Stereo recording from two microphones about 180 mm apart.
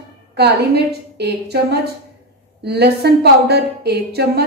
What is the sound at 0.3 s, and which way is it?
A woman's voice, 65° right (ahead or behind).